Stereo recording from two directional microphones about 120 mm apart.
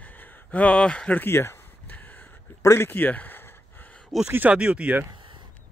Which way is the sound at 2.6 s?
20° left (ahead or behind).